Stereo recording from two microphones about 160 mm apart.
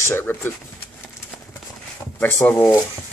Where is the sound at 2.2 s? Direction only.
10° left (ahead or behind).